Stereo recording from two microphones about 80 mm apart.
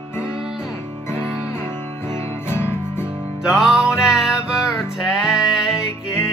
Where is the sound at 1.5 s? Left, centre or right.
Left.